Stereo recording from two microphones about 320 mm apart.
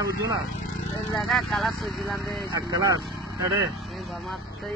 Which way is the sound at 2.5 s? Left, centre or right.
Centre.